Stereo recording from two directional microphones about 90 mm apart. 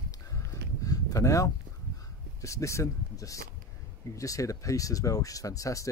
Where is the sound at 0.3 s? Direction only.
40° left (ahead or behind).